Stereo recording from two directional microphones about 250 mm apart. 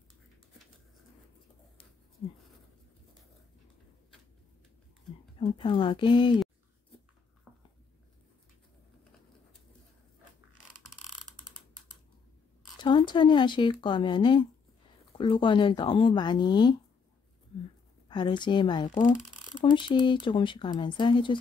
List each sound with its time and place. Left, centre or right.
5.4 s speech: centre
7.5 s a sound: centre
10.6 s mechanisms: centre
11.2 s ratchet: centre
12.8 s speech: centre
18.0 s speech: centre